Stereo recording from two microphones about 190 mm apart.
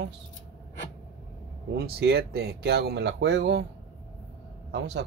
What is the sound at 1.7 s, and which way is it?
Speech, 55° right (ahead or behind).